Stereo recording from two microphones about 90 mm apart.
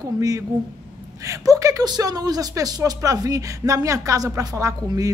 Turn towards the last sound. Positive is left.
turn(degrees=-40)  # may be behind; listen again after turning